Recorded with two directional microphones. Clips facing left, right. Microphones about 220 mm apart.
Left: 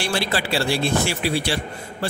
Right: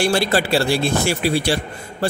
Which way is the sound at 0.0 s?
45° right (ahead or behind).